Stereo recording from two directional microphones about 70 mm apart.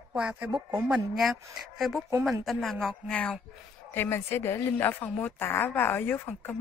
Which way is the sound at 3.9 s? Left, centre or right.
Left.